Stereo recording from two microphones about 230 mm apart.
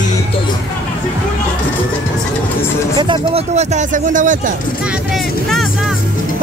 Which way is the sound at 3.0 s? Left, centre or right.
Right.